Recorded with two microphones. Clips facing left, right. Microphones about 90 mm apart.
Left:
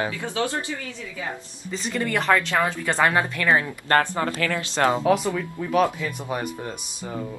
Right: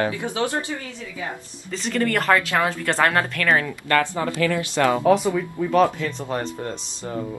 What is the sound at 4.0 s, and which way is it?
Speech, 55° left (ahead or behind).